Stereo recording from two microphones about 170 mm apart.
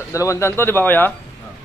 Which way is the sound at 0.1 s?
20° left (ahead or behind).